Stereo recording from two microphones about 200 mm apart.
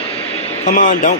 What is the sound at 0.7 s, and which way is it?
Speech, 45° left (ahead or behind).